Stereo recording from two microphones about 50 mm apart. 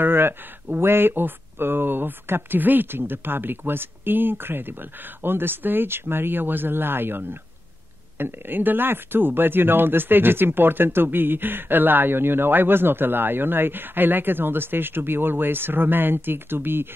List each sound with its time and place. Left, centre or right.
0.0 s speech: right